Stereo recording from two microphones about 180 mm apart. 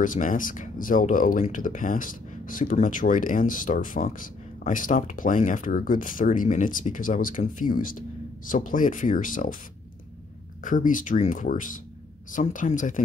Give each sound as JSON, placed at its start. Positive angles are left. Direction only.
{"t": 0.0, "sound": "speech", "side_deg": 45}
{"t": 10.6, "sound": "speech", "side_deg": 45}